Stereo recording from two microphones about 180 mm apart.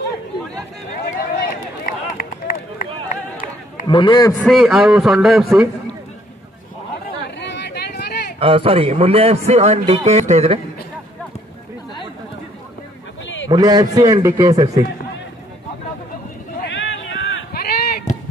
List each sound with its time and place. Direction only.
1.0 s run: 55° left (ahead or behind)
3.8 s a man's voice: 25° left (ahead or behind)
4.5 s a man's voice: centre (ahead or behind)
7.2 s a sound: 70° left (ahead or behind)
8.4 s a man's voice: 30° right (ahead or behind)
13.5 s a man's voice: 20° right (ahead or behind)
16.6 s a sound: 90° left; by 17.9 s 60° left (ahead or behind)